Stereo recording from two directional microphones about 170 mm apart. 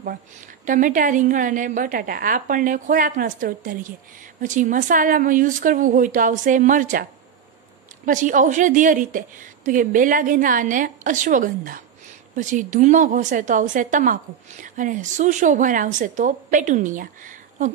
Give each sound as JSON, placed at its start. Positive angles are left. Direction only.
{"t": 0.7, "sound": "a woman's voice", "side_deg": -50}